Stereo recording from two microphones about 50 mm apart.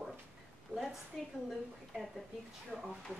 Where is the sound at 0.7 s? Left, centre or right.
Centre.